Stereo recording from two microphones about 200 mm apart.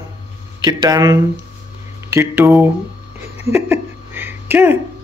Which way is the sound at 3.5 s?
10° right (ahead or behind).